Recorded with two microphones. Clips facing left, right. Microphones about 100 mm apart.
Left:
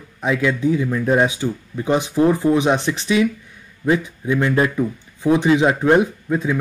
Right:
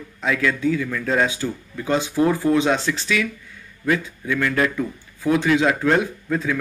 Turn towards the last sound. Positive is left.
turn(degrees=20)  # may be behind; listen again after turning